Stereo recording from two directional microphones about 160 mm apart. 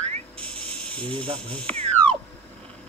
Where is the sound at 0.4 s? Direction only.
5° left (ahead or behind).